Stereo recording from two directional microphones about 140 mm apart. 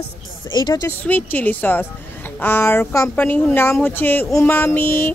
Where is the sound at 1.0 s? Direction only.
15° left (ahead or behind).